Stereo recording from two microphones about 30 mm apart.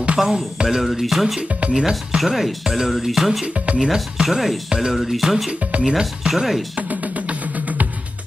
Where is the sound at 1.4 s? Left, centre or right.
Right.